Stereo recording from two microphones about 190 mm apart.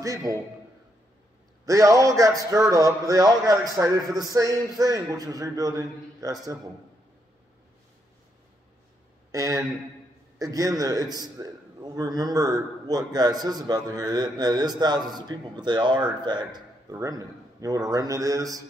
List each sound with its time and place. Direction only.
0.0 s speech: 20° right (ahead or behind)
1.7 s speech: 15° right (ahead or behind)
9.3 s a man's voice: 15° right (ahead or behind)